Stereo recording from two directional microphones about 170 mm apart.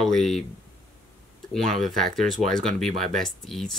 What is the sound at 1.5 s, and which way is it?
Speech, centre (ahead or behind).